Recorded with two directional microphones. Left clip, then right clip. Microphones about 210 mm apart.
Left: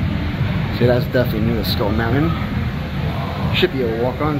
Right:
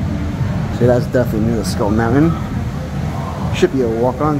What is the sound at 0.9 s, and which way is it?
Speech, 5° right (ahead or behind).